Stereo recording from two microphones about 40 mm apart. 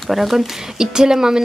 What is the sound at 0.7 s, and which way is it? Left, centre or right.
Speech, centre.